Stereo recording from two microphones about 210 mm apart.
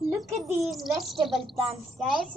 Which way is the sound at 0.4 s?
Centre (ahead or behind).